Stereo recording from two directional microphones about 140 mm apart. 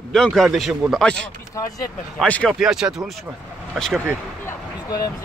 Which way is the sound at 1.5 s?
25° left (ahead or behind).